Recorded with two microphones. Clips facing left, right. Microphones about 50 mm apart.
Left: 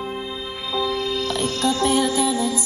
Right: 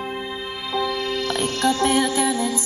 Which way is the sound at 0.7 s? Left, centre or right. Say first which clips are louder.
Left 1 dB; right.